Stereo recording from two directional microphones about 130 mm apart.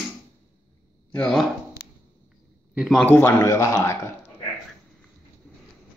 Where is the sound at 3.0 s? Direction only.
20° left (ahead or behind).